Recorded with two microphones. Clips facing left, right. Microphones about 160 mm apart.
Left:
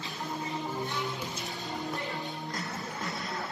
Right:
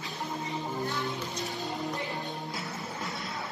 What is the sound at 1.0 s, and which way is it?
Music, centre (ahead or behind).